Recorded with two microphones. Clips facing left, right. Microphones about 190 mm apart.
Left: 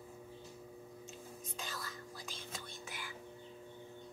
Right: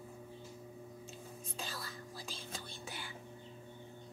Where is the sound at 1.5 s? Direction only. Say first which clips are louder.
Right 1 dB; 30° right (ahead or behind).